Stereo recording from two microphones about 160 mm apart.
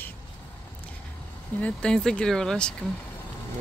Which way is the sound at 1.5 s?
5° left (ahead or behind).